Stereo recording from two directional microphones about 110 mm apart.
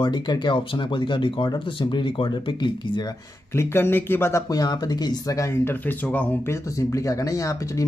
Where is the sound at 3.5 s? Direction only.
20° left (ahead or behind).